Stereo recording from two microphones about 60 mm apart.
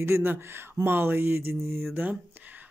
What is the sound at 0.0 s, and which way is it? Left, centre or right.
Speech, right.